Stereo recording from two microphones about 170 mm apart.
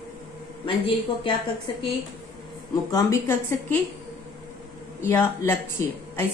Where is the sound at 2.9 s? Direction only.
15° left (ahead or behind).